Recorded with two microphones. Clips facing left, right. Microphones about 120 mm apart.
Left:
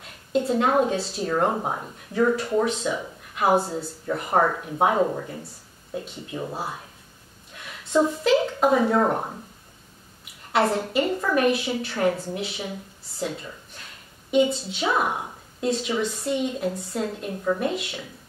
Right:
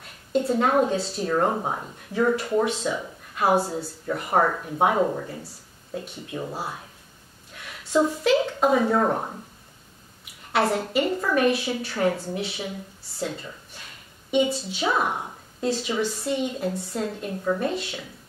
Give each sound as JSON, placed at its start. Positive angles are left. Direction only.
{"t": 0.3, "sound": "speech", "side_deg": 0}
{"t": 6.3, "sound": "speech", "side_deg": 0}
{"t": 7.9, "sound": "speech", "side_deg": 0}
{"t": 10.5, "sound": "speech", "side_deg": 0}
{"t": 14.7, "sound": "speech", "side_deg": 0}